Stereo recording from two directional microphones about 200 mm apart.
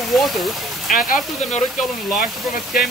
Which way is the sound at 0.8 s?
45° left (ahead or behind).